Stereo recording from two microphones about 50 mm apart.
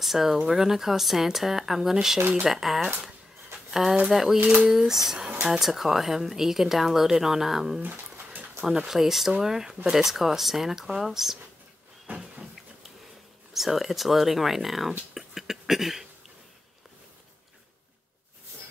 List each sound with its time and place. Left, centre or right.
0.0 s speech: centre
2.1 s speech: right
2.5 s speech: centre
4.0 s speech: centre
4.4 s speech: right
4.6 s speech: centre
12.1 s vehicle: right
13.5 s speech: centre